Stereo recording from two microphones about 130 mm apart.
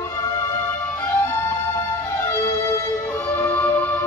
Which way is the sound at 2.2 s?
25° left (ahead or behind).